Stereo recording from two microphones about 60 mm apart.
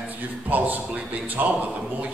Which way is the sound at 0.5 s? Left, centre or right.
Right.